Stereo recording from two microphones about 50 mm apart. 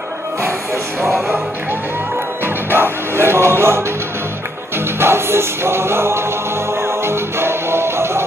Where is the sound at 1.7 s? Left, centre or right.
Right.